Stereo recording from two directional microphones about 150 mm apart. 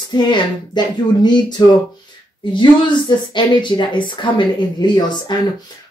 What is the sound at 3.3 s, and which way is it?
A woman's voice, 30° left (ahead or behind).